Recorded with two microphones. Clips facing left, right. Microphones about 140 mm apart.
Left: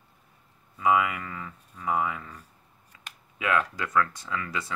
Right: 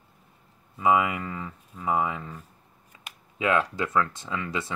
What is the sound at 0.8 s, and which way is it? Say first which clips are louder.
Speech: right 1 dB; 25° right (ahead or behind).